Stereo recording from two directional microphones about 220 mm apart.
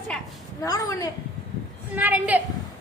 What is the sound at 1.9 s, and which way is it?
Speech, 5° right (ahead or behind).